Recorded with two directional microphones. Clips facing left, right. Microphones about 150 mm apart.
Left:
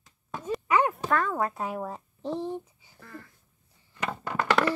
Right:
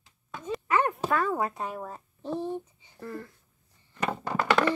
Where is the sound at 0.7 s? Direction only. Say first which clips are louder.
Left 2 dB; 15° left (ahead or behind).